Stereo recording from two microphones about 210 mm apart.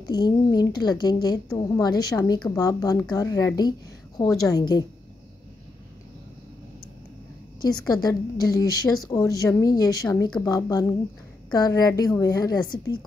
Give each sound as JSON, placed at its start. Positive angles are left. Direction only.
{"t": 0.0, "sound": "a woman's voice", "side_deg": 20}
{"t": 7.6, "sound": "a woman's voice", "side_deg": 20}